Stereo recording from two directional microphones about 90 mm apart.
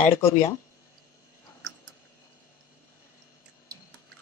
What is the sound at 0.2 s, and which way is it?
Speech, 30° left (ahead or behind).